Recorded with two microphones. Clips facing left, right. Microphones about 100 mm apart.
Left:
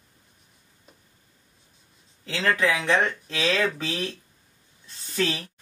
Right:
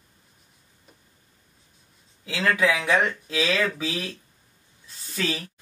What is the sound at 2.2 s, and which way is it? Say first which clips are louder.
Speech: right 1 dB; 5° right (ahead or behind).